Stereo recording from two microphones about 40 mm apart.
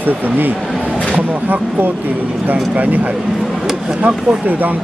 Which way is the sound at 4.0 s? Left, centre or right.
Right.